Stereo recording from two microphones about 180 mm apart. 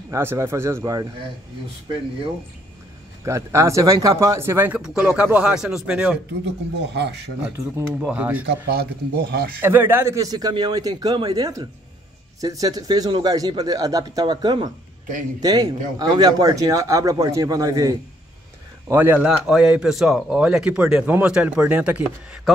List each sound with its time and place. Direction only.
0.1 s speech: 15° right (ahead or behind)
3.3 s speech: 15° right (ahead or behind)
6.8 s speech: 70° right (ahead or behind)
7.4 s speech: 15° right (ahead or behind)
8.6 s speech: 60° right (ahead or behind)
9.6 s speech: 10° right (ahead or behind)